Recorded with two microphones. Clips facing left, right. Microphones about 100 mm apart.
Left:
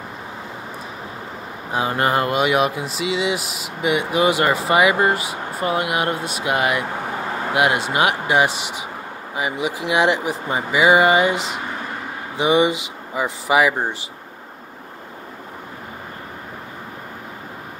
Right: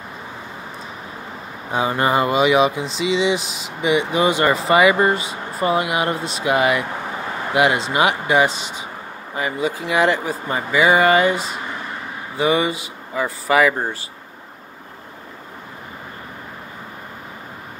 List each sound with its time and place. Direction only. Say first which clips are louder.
2.0 s speech: right 2 dB; centre (ahead or behind); by 13.9 s 15° left (ahead or behind)